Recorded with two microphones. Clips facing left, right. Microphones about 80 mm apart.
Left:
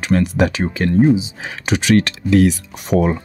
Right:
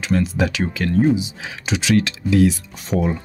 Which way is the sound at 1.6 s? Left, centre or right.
Left.